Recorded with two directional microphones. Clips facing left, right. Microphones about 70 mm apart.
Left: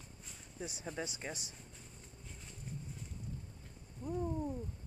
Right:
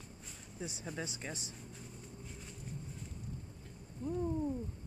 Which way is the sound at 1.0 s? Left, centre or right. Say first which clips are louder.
Left 1 dB; centre.